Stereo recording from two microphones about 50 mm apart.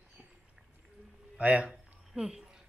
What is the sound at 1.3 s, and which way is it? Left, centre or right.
Speech, right.